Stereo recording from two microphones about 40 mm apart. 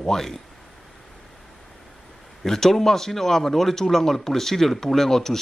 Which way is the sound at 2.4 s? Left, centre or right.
Centre.